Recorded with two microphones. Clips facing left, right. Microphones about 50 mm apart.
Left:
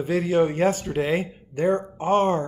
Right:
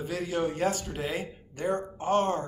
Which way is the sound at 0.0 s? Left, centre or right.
Left.